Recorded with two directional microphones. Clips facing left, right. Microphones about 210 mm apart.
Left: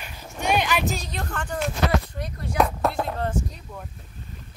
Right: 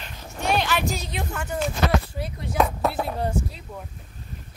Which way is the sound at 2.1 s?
5° right (ahead or behind).